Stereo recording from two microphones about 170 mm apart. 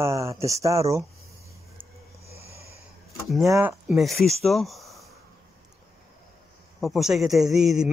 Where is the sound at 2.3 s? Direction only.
35° left (ahead or behind).